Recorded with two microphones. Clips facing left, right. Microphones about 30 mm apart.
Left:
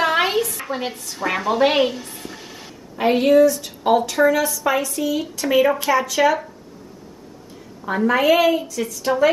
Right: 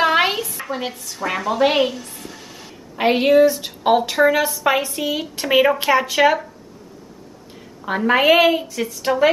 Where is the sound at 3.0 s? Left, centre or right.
Right.